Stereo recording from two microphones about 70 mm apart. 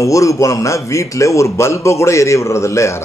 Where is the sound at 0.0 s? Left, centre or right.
Left.